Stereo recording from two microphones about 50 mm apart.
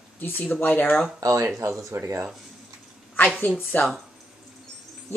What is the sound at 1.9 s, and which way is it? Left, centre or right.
Speech, right.